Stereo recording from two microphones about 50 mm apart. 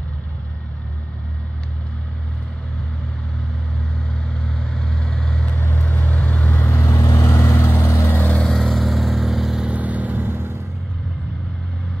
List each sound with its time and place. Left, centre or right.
4.6 s vehicle: centre
5.8 s vehicle: left
6.7 s vehicle: left
8.5 s vehicle: centre
9.7 s vehicle: right